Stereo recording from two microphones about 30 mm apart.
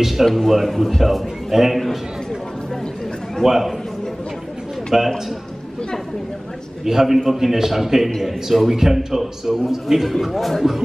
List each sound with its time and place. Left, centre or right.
0.2 s a man's voice: centre
3.4 s a man's voice: centre
4.9 s a man's voice: centre
6.8 s a man's voice: centre
10.2 s speech: centre